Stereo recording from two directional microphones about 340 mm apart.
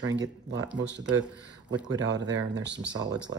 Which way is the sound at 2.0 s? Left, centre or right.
Right.